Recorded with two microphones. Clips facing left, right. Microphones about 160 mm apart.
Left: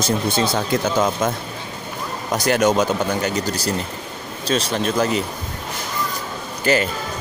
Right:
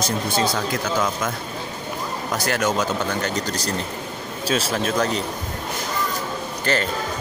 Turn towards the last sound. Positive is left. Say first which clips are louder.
# left 4 dB
turn(degrees=10)  # may be behind; listen again after turning